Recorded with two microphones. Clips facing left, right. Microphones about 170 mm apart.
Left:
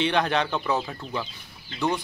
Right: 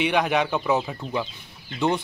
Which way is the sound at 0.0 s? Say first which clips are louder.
Right 2 dB; 10° right (ahead or behind).